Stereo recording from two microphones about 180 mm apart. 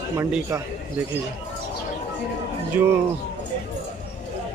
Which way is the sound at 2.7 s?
10° right (ahead or behind).